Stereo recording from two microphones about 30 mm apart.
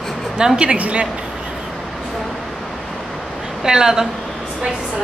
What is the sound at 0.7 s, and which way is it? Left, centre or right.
Speech, right.